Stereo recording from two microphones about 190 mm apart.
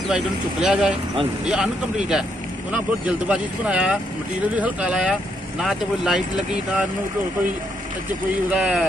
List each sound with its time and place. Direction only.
0.1 s speech: 5° right (ahead or behind)
2.7 s speech: 5° right (ahead or behind)
8.5 s speech: 5° right (ahead or behind)